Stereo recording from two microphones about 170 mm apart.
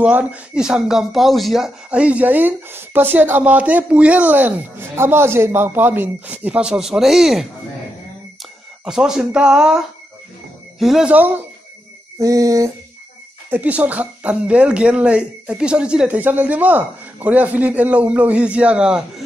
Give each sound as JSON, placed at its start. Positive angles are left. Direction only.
{"t": 0.0, "sound": "speech", "side_deg": -10}
{"t": 8.8, "sound": "speech", "side_deg": -5}
{"t": 12.2, "sound": "a sound", "side_deg": -20}
{"t": 13.5, "sound": "speech", "side_deg": -10}